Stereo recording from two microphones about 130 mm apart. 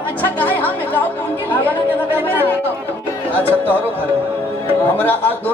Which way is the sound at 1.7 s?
15° left (ahead or behind).